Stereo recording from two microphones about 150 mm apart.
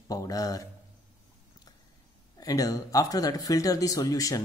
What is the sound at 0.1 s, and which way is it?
Speech, 25° left (ahead or behind).